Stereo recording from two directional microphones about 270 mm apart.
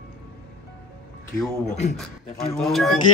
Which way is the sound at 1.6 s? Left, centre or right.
Left.